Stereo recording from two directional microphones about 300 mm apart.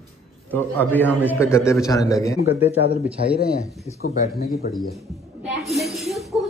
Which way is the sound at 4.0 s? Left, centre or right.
Left.